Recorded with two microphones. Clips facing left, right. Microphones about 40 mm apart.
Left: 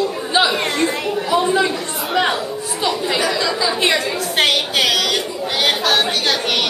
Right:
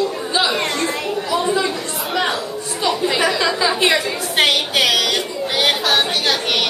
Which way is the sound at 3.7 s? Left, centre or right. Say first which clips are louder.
Even; centre.